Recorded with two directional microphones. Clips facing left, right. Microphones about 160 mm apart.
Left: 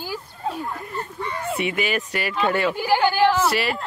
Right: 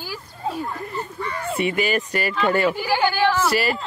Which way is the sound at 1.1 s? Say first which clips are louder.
Even; 15° left (ahead or behind).